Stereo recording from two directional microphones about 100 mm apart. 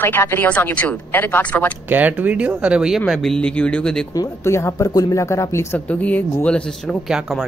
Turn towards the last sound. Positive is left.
turn(degrees=-5)  # may be behind; listen again after turning